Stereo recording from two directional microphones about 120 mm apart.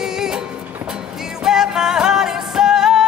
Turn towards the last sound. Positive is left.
turn(degrees=-5)  # may be behind; listen again after turning